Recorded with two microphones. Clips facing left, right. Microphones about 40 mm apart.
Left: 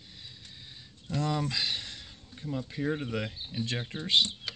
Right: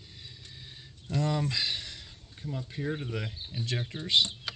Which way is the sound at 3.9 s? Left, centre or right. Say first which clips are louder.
Left 1 dB; left.